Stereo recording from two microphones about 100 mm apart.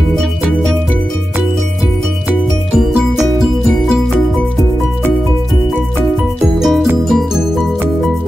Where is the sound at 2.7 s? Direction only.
Centre (ahead or behind).